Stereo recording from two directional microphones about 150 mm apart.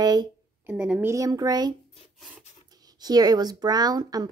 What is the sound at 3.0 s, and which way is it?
Speech, 25° right (ahead or behind).